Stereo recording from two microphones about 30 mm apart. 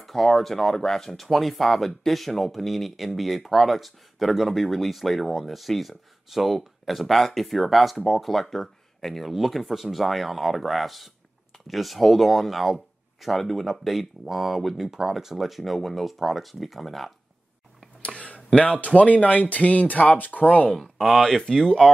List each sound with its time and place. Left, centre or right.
0.0 s speech: centre
1.1 s speech: centre
15.6 s speech: centre
18.0 s a sound: left
18.5 s speech: left
18.8 s speech: left
20.4 s speech: left
21.1 s speech: centre
21.5 s speech: left